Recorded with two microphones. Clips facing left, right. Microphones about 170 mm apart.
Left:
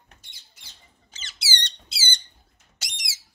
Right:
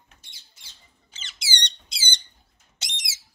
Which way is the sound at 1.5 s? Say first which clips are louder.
Even; 15° right (ahead or behind).